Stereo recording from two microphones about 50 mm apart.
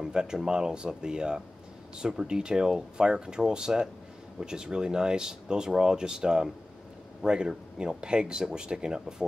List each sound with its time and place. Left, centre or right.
0.0 s speech: centre